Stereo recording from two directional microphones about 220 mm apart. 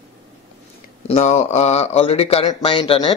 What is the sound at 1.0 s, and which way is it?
Speech, 30° left (ahead or behind).